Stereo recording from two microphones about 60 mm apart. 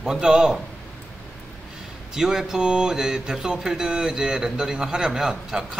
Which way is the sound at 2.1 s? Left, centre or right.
Centre.